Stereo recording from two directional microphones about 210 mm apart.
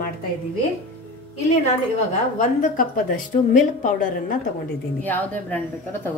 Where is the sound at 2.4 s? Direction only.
40° left (ahead or behind).